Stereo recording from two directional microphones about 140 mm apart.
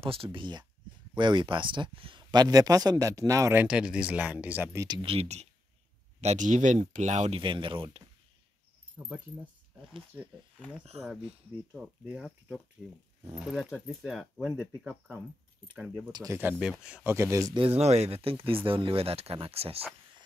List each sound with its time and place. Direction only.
0.0 s speech: 40° right (ahead or behind); by 3.6 s 20° right (ahead or behind)
3.6 s speech: 5° right (ahead or behind)
5.0 s speech: 45° right (ahead or behind)
6.2 s speech: 60° right (ahead or behind)
7.3 s speech: 35° right (ahead or behind)
8.9 s speech: 10° right (ahead or behind)
11.7 s speech: 5° right (ahead or behind)
16.1 s speech: 30° right (ahead or behind)
16.3 s speech: 10° right (ahead or behind)
17.6 s speech: 45° right (ahead or behind)